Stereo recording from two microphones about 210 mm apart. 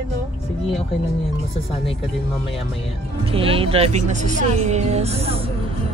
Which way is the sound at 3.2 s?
25° right (ahead or behind).